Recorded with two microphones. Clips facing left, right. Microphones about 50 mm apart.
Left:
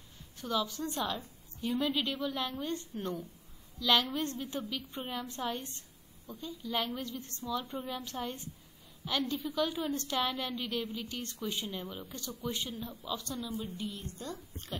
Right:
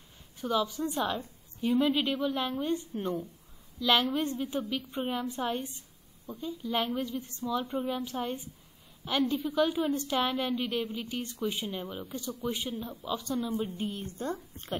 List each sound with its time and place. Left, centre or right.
0.4 s a woman's voice: centre
7.6 s a woman's voice: right
7.9 s a woman's voice: centre
11.8 s speech: centre
12.4 s a woman's voice: centre
13.7 s a woman's voice: right